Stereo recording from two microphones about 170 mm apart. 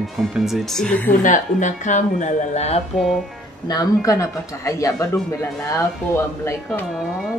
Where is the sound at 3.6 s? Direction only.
20° left (ahead or behind).